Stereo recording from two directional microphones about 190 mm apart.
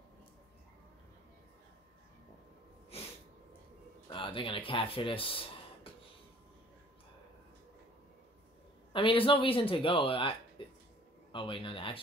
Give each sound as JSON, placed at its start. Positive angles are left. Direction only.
{"t": 2.9, "sound": "sneeze", "side_deg": 30}
{"t": 4.1, "sound": "speech", "side_deg": 25}
{"t": 8.9, "sound": "speech", "side_deg": 25}